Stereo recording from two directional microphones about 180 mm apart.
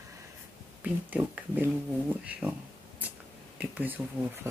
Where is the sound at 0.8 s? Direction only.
10° right (ahead or behind).